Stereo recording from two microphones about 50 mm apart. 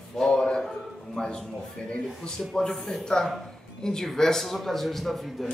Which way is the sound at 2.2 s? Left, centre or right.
Centre.